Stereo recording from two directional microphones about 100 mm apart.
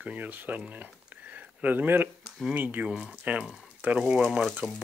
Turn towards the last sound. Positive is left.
turn(degrees=-10)  # may be behind; listen again after turning